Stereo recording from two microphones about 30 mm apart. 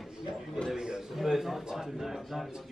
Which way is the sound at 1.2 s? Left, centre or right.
Centre.